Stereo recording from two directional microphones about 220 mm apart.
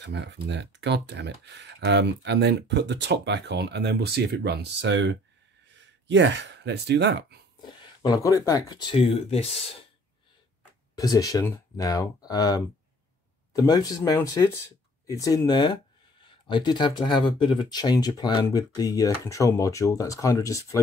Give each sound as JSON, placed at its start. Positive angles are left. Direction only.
{"t": 0.0, "sound": "speech", "side_deg": -50}
{"t": 7.6, "sound": "speech", "side_deg": 20}
{"t": 11.0, "sound": "speech", "side_deg": 15}